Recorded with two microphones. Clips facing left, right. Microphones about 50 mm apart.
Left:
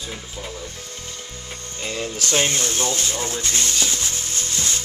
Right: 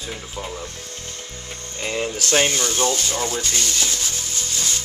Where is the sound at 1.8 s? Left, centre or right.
Right.